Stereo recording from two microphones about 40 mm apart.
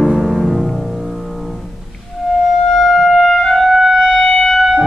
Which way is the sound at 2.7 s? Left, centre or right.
Centre.